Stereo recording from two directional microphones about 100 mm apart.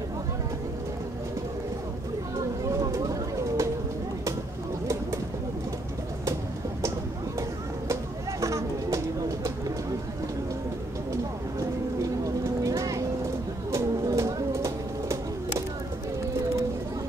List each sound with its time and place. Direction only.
2.7 s bird: 35° right (ahead or behind)
7.9 s a sound: 30° right (ahead or behind)
12.6 s vehicle: 35° right (ahead or behind)
13.7 s bird: 30° right (ahead or behind)